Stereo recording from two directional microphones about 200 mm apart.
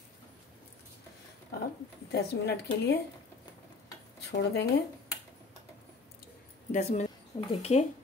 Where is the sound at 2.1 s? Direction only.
55° left (ahead or behind).